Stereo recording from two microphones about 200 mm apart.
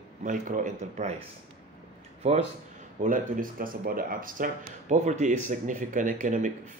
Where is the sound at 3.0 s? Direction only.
40° right (ahead or behind).